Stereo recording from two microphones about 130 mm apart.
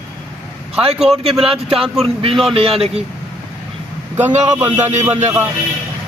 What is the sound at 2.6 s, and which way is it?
Speech, 50° right (ahead or behind).